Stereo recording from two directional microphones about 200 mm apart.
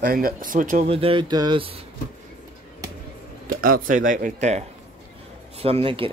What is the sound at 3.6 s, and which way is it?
Speech, 45° right (ahead or behind).